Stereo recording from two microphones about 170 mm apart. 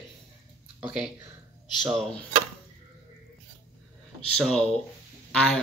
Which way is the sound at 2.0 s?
5° left (ahead or behind).